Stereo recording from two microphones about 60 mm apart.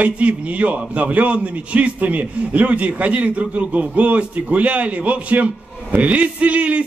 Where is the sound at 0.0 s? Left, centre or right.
Right.